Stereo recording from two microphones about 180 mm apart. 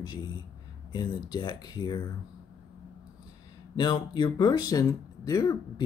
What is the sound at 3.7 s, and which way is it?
Speech, 25° left (ahead or behind).